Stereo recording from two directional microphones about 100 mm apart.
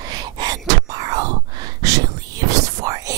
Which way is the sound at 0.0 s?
40° right (ahead or behind).